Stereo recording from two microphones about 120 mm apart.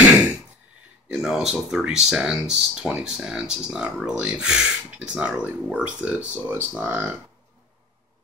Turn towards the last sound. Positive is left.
turn(degrees=-15)  # may be behind; listen again after turning